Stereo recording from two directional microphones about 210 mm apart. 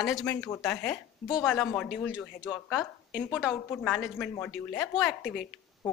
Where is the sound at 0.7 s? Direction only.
10° left (ahead or behind).